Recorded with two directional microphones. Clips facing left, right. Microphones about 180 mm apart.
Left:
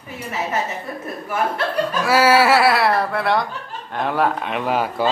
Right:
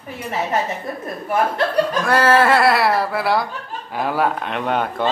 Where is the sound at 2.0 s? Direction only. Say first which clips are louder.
Left 2 dB; 5° left (ahead or behind).